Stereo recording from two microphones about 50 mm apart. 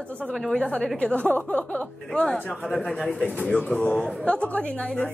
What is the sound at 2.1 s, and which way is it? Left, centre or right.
Speech, left.